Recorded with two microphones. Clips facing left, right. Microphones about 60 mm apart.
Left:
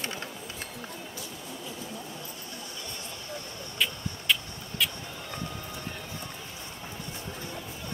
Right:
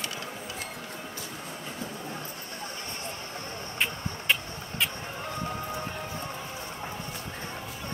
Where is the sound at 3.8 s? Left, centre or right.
Right.